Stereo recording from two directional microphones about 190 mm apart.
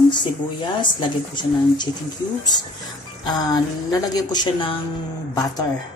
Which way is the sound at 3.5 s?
20° left (ahead or behind).